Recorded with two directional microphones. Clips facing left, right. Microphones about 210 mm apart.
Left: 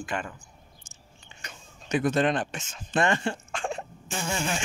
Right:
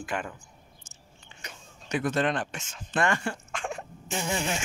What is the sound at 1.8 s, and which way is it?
Speech, 20° left (ahead or behind).